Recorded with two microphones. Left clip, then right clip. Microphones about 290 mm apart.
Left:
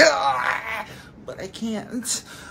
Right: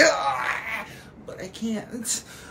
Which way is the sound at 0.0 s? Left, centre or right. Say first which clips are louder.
Left 3 dB; centre.